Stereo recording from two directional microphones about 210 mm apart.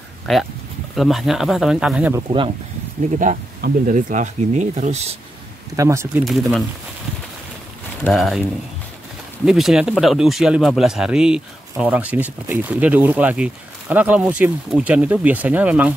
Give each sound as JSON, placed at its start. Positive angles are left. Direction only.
{"t": 0.3, "sound": "speech", "side_deg": 0}
{"t": 3.2, "sound": "speech", "side_deg": -40}
{"t": 5.8, "sound": "speech", "side_deg": -15}
{"t": 6.2, "sound": "speech", "side_deg": 0}
{"t": 8.0, "sound": "speech", "side_deg": 0}